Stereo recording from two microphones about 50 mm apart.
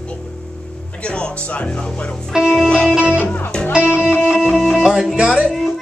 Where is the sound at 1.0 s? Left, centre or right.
Left.